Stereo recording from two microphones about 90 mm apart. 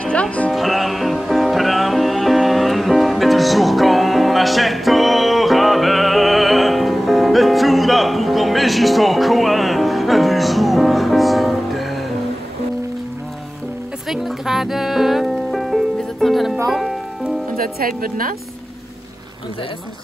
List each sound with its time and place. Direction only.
0.0 s music: 15° left (ahead or behind)
0.5 s music: centre (ahead or behind)
14.0 s music: 5° right (ahead or behind)